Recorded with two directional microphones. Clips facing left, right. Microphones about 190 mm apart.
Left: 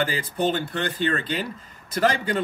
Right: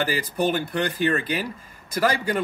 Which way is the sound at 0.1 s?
10° right (ahead or behind).